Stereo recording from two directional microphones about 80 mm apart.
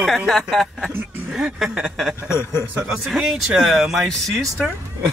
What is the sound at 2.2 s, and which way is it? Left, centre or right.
Speech, left.